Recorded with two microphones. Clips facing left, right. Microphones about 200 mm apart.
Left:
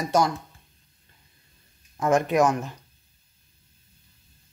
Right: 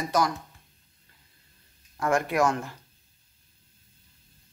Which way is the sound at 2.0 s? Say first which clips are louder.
Left 4 dB; 20° left (ahead or behind).